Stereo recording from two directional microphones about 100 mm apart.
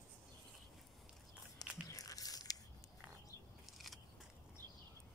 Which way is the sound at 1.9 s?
35° left (ahead or behind).